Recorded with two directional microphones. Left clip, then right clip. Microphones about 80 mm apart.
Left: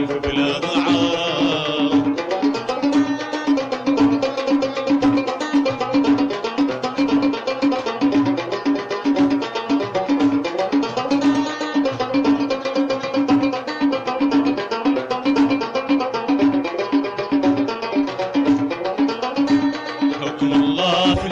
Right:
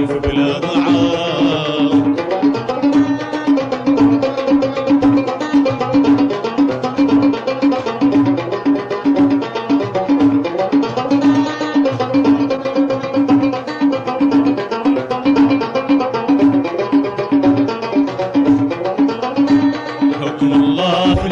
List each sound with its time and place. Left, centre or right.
0.0 s music: right